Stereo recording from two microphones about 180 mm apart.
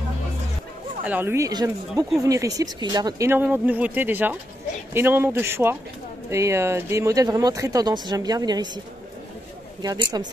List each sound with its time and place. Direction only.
1.0 s speech: 10° right (ahead or behind)